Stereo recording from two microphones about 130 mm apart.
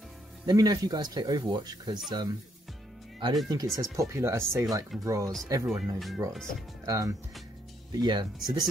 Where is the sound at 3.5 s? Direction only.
25° right (ahead or behind).